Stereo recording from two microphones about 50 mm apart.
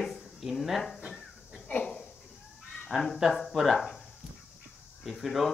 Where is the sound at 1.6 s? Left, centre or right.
Left.